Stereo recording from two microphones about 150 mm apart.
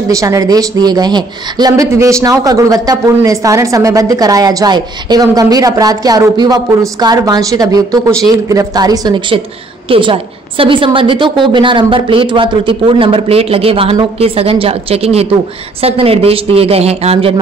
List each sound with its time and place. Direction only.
0.1 s a woman's voice: 20° right (ahead or behind); by 17.3 s 40° right (ahead or behind)